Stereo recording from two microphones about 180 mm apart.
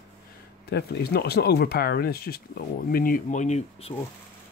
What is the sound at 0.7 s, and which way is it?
Speech, 65° left (ahead or behind).